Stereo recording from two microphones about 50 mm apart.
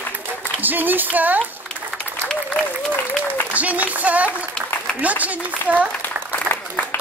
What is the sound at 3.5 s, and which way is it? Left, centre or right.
Speech, right.